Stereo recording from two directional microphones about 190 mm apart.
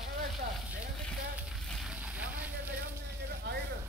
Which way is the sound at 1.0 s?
5° left (ahead or behind).